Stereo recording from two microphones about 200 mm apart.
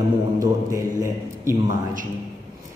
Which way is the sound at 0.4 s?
15° right (ahead or behind).